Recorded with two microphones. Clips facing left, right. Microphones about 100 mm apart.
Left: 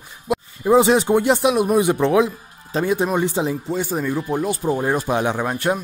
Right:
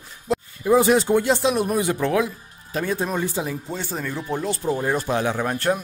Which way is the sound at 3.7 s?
10° left (ahead or behind).